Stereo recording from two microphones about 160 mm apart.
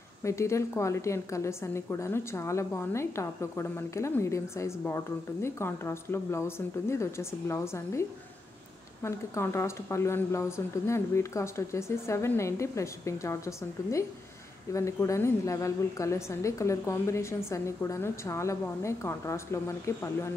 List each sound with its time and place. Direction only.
0.2 s a woman's voice: 20° left (ahead or behind)